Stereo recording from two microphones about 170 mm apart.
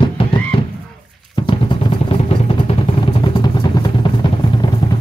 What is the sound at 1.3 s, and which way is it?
Vehicle, 30° left (ahead or behind).